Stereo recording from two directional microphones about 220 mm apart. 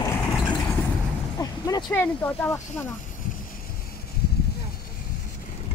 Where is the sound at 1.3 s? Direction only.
15° left (ahead or behind).